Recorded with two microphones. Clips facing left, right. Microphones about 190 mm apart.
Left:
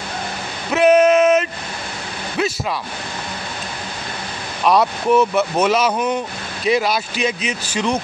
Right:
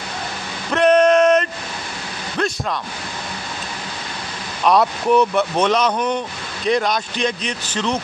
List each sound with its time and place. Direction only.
0.7 s male singing: 5° left (ahead or behind)
4.6 s speech: centre (ahead or behind)